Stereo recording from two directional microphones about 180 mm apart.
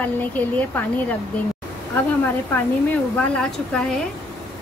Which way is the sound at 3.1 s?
5° left (ahead or behind).